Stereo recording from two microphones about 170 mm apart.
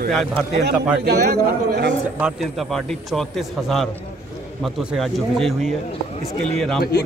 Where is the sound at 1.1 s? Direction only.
70° right (ahead or behind).